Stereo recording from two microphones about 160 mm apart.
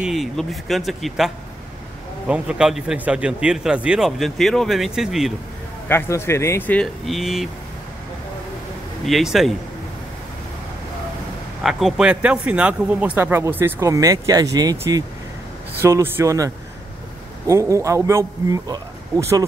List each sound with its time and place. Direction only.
0.0 s a man's voice: centre (ahead or behind)
5.9 s speech: 15° left (ahead or behind); by 7.4 s centre (ahead or behind)
9.0 s a man's voice: centre (ahead or behind)
11.6 s a man's voice: 5° right (ahead or behind); by 19.4 s 20° right (ahead or behind)